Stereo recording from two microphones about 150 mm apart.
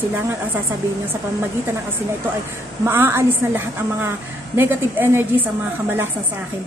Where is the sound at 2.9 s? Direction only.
15° right (ahead or behind).